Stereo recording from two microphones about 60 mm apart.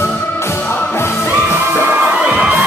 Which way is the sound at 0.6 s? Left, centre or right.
Left.